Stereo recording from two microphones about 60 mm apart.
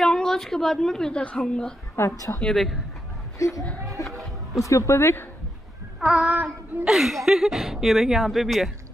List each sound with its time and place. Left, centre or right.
0.0 s a woman's voice: centre
2.0 s speech: left
2.4 s a woman's voice: centre
3.3 s speech: left
5.9 s a sound: centre
6.2 s speech: right
6.9 s speech: centre